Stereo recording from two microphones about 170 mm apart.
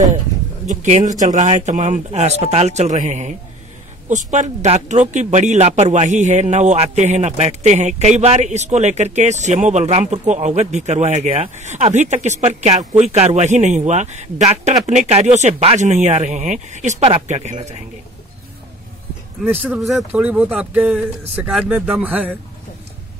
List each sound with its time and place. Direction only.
0.7 s speech: 45° right (ahead or behind)
19.8 s speech: centre (ahead or behind)